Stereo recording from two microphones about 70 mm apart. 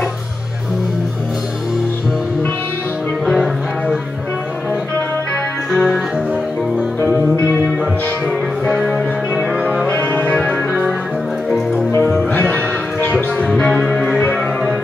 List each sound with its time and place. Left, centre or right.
3.3 s music: centre
5.7 s music: centre
8.3 s music: centre
9.8 s music: left
12.3 s music: left
13.5 s music: centre